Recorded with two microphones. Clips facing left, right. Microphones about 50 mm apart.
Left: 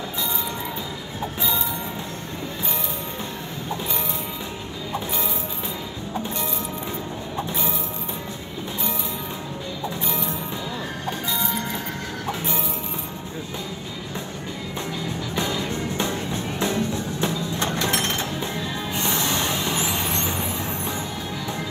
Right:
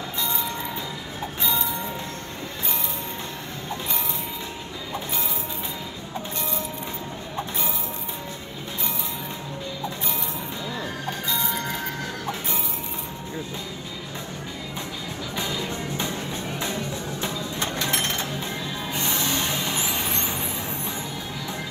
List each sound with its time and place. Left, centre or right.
17.2 s music: left
18.9 s vehicle: left